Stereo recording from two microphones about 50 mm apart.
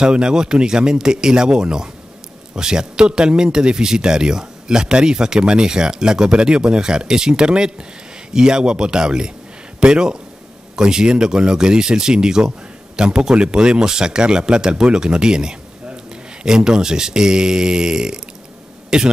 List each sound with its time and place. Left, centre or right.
0.0 s speech: centre